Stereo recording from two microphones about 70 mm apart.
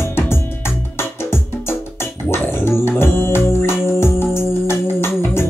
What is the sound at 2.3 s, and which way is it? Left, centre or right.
Music, left.